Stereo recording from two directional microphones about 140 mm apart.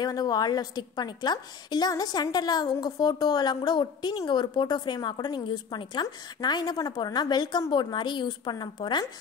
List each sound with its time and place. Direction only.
0.0 s a woman's voice: 30° left (ahead or behind)